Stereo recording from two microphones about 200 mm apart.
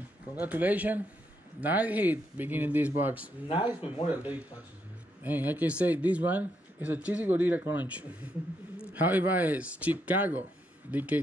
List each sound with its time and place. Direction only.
0.4 s speech: 10° right (ahead or behind)
3.4 s speech: 25° left (ahead or behind)
4.2 s speech: 10° right (ahead or behind)
8.9 s speech: 10° right (ahead or behind)